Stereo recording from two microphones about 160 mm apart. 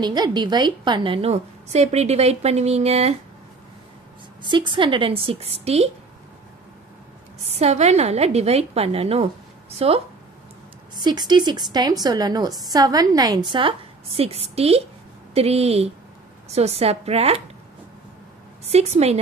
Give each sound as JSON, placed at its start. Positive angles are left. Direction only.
{"t": 0.0, "sound": "a woman's voice", "side_deg": -25}
{"t": 4.5, "sound": "a woman's voice", "side_deg": -30}
{"t": 7.4, "sound": "a woman's voice", "side_deg": -40}
{"t": 11.0, "sound": "a woman's voice", "side_deg": -25}
{"t": 18.7, "sound": "a woman's voice", "side_deg": -40}